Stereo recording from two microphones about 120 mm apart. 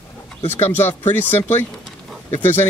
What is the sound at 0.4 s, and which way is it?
Speech, 55° left (ahead or behind).